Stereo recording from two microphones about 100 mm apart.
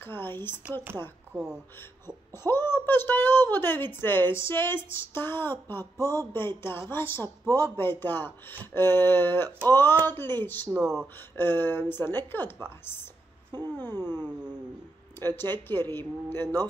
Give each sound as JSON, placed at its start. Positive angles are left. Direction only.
{"t": 0.0, "sound": "a child's voice", "side_deg": 20}
{"t": 10.7, "sound": "speech", "side_deg": -5}
{"t": 11.1, "sound": "a child's voice", "side_deg": 20}
{"t": 13.7, "sound": "a child's voice", "side_deg": 20}